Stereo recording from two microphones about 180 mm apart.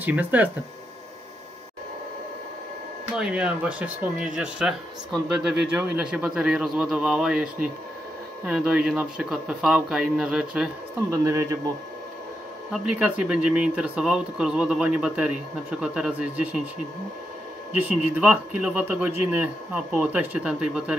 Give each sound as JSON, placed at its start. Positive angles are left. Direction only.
{"t": 0.0, "sound": "speech", "side_deg": -10}
{"t": 3.2, "sound": "speech", "side_deg": -5}
{"t": 8.5, "sound": "speech", "side_deg": -5}
{"t": 11.1, "sound": "speech", "side_deg": -15}
{"t": 12.7, "sound": "speech", "side_deg": -5}
{"t": 17.7, "sound": "speech", "side_deg": -10}